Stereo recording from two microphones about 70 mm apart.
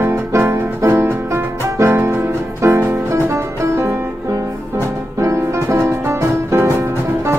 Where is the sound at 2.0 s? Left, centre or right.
Right.